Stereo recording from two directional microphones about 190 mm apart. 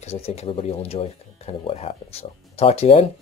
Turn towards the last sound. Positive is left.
turn(degrees=35)  # may be behind; listen again after turning